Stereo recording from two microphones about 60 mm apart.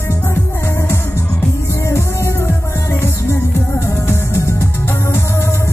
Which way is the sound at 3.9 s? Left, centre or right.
Left.